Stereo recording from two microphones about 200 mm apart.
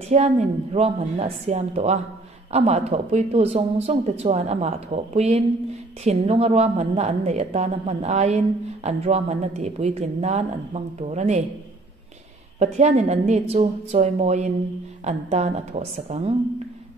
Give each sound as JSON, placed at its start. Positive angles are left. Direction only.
{"t": 0.1, "sound": "a woman's voice", "side_deg": -35}
{"t": 12.5, "sound": "a woman's voice", "side_deg": -35}